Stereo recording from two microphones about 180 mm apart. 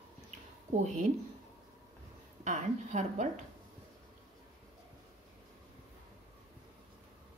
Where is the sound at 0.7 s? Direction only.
45° right (ahead or behind).